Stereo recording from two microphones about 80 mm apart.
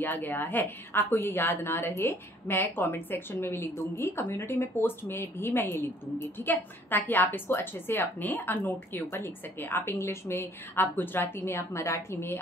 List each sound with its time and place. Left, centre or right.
0.0 s a woman's voice: left